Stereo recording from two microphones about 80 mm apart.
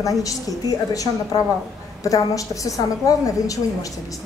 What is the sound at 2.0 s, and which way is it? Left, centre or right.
A man's voice, left.